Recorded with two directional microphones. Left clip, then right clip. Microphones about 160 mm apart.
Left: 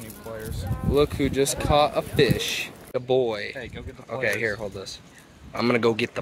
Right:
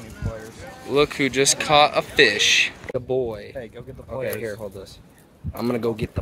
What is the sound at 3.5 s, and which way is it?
Speech, 90° right.